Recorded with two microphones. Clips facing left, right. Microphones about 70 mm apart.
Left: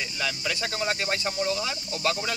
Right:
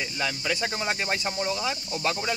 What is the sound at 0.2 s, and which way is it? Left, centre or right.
Speech, centre.